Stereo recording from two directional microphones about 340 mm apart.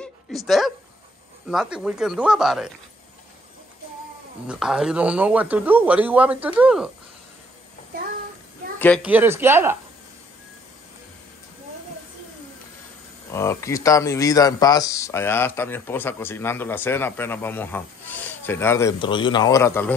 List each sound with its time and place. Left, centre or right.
0.0 s a sound: centre
1.5 s a man's voice: centre
4.5 s a man's voice: centre
8.7 s a man's voice: centre
13.3 s speech: centre